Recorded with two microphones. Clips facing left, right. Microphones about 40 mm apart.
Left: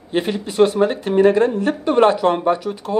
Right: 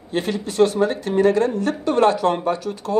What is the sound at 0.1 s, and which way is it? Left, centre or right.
Speech, left.